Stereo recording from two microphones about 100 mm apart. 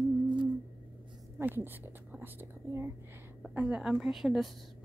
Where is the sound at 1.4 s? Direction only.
20° right (ahead or behind); by 4.5 s centre (ahead or behind).